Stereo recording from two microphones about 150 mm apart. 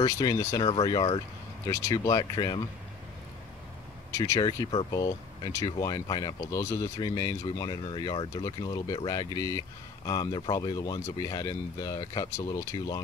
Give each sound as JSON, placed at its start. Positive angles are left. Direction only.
{"t": 0.0, "sound": "speech", "side_deg": 25}
{"t": 0.7, "sound": "speech", "side_deg": 35}
{"t": 1.7, "sound": "speech", "side_deg": 20}
{"t": 4.1, "sound": "speech", "side_deg": 25}